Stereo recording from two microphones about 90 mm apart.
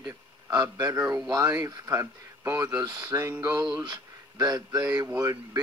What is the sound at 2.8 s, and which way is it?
Speech, 45° right (ahead or behind).